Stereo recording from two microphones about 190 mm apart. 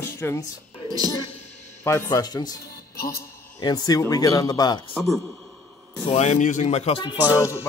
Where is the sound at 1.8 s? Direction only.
15° left (ahead or behind).